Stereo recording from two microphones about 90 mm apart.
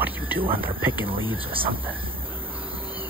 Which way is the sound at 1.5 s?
80° right.